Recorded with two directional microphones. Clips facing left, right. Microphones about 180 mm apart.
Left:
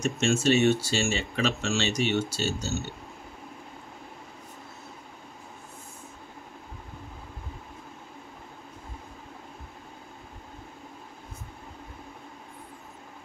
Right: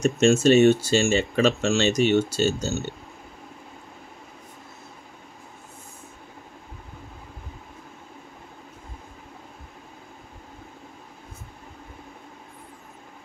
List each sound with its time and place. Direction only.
0.0 s speech: 45° right (ahead or behind)